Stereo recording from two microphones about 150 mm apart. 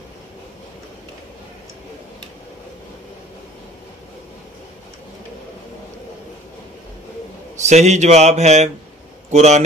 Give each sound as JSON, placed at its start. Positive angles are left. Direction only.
{"t": 7.5, "sound": "speech", "side_deg": -50}